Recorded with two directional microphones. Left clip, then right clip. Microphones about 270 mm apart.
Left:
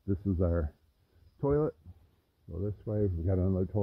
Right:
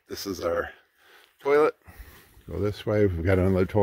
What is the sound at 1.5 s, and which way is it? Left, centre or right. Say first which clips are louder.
Speech: right 9 dB; centre.